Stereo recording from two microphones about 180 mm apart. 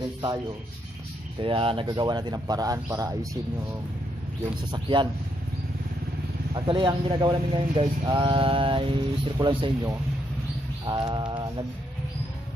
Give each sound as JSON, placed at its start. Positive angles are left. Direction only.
{"t": 1.4, "sound": "speech", "side_deg": -30}
{"t": 4.6, "sound": "speech", "side_deg": -25}
{"t": 6.5, "sound": "speech", "side_deg": -25}